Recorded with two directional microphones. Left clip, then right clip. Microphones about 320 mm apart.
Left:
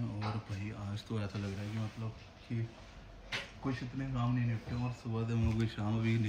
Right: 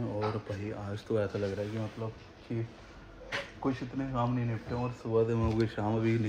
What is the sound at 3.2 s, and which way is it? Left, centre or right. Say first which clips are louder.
Speech: right 5 dB; centre.